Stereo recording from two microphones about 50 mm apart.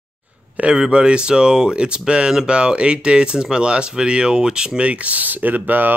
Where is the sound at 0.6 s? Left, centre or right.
Centre.